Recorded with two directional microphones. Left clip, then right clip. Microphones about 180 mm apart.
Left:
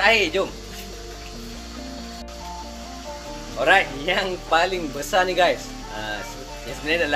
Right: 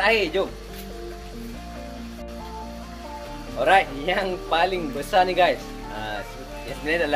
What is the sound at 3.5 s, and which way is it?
Speech, 20° right (ahead or behind).